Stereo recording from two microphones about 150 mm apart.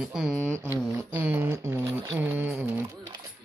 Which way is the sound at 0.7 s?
15° right (ahead or behind).